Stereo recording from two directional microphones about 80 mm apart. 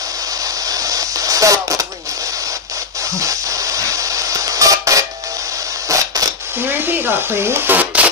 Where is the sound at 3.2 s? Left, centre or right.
Right.